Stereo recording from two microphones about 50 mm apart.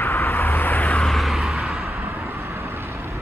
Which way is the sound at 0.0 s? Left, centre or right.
Left.